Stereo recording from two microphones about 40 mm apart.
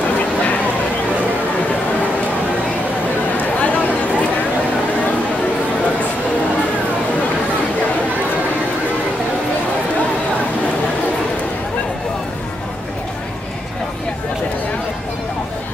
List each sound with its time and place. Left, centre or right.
3.3 s chatter: left